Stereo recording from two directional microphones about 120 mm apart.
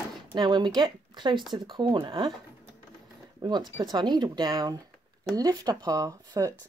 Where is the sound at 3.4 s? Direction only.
35° right (ahead or behind).